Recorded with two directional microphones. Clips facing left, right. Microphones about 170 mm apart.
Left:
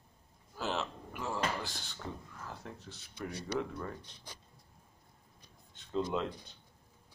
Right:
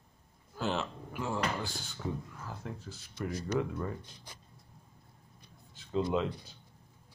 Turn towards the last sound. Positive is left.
turn(degrees=0)  # may be behind; listen again after turning